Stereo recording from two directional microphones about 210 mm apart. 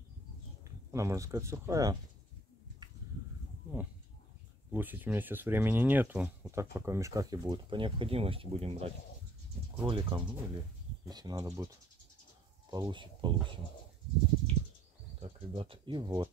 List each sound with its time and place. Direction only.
0.9 s speech: 15° right (ahead or behind)
4.6 s speech: 10° right (ahead or behind)
12.7 s speech: 20° right (ahead or behind)
15.1 s speech: 25° right (ahead or behind)